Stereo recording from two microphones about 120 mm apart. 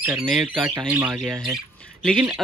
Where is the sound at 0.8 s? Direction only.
10° right (ahead or behind).